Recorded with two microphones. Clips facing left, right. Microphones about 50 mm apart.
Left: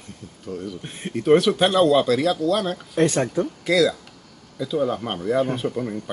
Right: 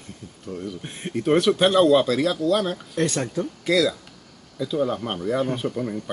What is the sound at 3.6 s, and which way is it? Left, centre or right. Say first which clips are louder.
Speech: left 1 dB; centre.